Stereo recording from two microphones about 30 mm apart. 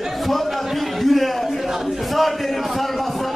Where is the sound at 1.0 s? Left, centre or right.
Centre.